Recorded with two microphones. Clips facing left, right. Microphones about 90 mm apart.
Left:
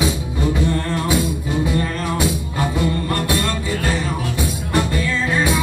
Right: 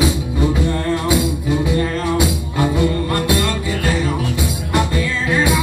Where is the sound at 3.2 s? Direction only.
20° right (ahead or behind).